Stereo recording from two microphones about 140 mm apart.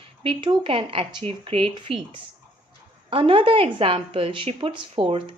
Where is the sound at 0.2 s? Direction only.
35° right (ahead or behind).